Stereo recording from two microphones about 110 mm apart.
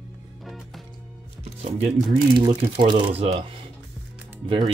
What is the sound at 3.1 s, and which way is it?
Speech, 60° right (ahead or behind).